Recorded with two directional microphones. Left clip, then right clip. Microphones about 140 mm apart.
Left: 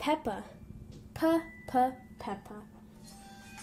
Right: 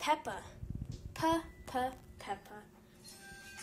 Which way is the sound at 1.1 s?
55° left (ahead or behind).